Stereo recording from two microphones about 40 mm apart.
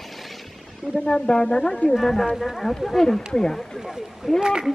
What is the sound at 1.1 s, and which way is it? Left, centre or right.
Speech, centre.